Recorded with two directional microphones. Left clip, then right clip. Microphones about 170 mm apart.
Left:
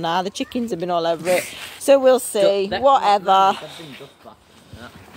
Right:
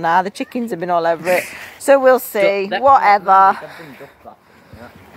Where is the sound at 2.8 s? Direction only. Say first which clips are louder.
Right 5 dB; 10° left (ahead or behind).